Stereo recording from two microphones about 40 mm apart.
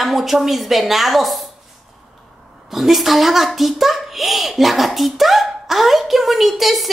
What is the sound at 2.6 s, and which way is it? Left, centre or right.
A child's voice, centre.